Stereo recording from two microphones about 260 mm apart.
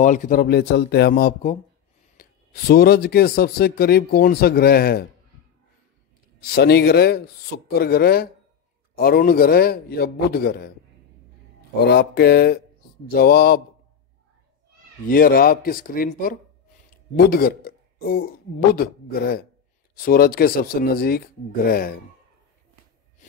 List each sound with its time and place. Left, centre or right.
0.0 s speech: left
6.5 s speech: left
11.8 s speech: left
15.0 s speech: left